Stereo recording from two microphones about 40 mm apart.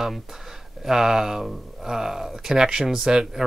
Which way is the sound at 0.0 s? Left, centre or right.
Centre.